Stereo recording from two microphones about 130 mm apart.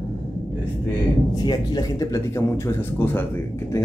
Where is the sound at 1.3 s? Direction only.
30° left (ahead or behind).